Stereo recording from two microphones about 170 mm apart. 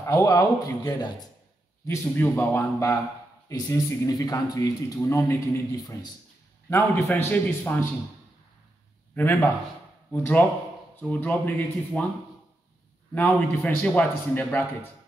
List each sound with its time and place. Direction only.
0.0 s a man's voice: 15° left (ahead or behind)
9.1 s a man's voice: 10° left (ahead or behind)
13.7 s a man's voice: 10° left (ahead or behind)